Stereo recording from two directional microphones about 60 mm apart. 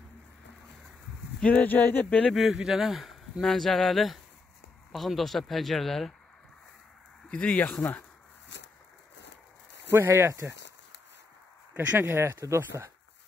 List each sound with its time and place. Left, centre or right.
1.4 s speech: left
2.3 s speech: centre
7.2 s speech: centre
9.8 s speech: right
11.7 s speech: right